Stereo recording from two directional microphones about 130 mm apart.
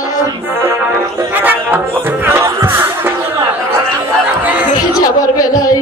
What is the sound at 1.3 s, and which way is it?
Speech, 15° right (ahead or behind).